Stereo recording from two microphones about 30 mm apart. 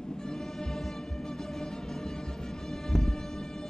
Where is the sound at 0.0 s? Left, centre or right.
Centre.